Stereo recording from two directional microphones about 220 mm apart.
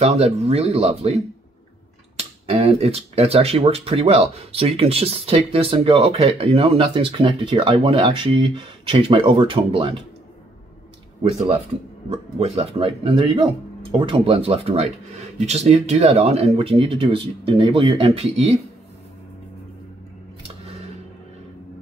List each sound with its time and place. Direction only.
0.0 s speech: 30° right (ahead or behind)
2.1 s speech: 25° right (ahead or behind)
12.1 s speech: 30° right (ahead or behind)